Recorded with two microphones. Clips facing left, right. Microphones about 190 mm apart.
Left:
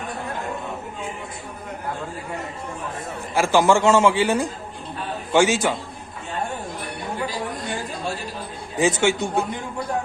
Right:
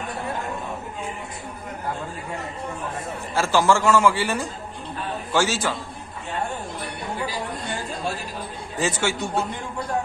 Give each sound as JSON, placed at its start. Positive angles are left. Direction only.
{"t": 3.3, "sound": "a man's voice", "side_deg": 15}
{"t": 8.7, "sound": "a man's voice", "side_deg": 15}